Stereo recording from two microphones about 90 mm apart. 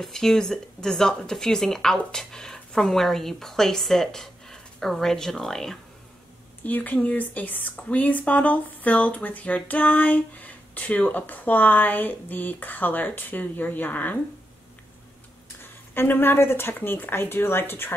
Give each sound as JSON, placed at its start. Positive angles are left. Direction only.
{"t": 0.0, "sound": "speech", "side_deg": 5}
{"t": 6.6, "sound": "speech", "side_deg": 20}
{"t": 15.9, "sound": "speech", "side_deg": 25}